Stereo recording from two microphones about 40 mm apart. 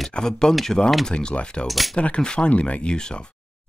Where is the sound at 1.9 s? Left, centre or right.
Left.